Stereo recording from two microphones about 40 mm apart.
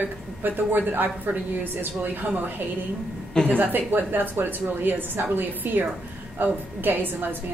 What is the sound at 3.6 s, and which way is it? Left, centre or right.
A woman's voice, right.